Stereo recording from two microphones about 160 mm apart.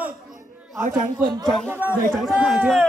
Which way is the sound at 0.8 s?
55° right (ahead or behind).